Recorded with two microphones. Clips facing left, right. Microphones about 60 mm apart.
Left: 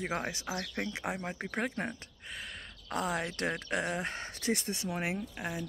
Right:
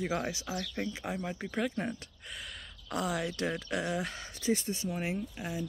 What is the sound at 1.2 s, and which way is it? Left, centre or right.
Speech, left.